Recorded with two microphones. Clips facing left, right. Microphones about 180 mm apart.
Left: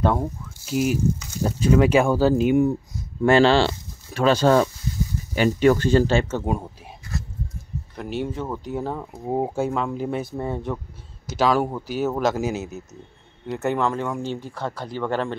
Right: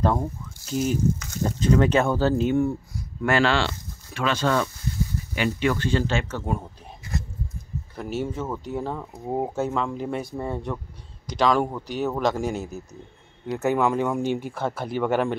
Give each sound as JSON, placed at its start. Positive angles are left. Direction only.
{"t": 0.0, "sound": "speech", "side_deg": 0}
{"t": 6.2, "sound": "speech", "side_deg": 20}
{"t": 7.9, "sound": "speech", "side_deg": -5}